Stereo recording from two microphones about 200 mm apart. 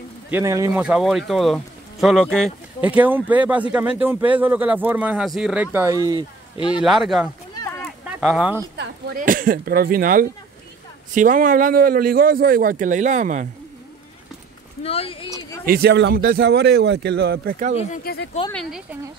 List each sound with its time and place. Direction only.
0.3 s speech: 15° right (ahead or behind)
0.8 s speech: centre (ahead or behind)
2.8 s speech: 10° right (ahead or behind)
6.8 s speech: centre (ahead or behind)
8.7 s speech: 45° right (ahead or behind)
14.8 s speech: 30° left (ahead or behind)
15.6 s speech: 50° right (ahead or behind)
18.0 s speech: 50° left (ahead or behind)
18.5 s speech: 5° left (ahead or behind)